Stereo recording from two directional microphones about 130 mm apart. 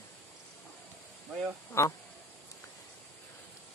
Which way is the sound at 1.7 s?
20° left (ahead or behind).